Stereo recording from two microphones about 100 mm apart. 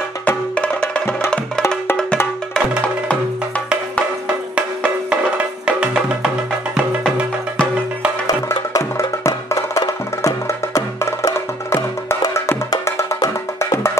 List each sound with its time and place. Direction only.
0.6 s music: 10° left (ahead or behind)
3.1 s music: 10° left (ahead or behind)
4.6 s music: 10° right (ahead or behind)
8.7 s wood block: 30° left (ahead or behind)
12.8 s music: 30° left (ahead or behind)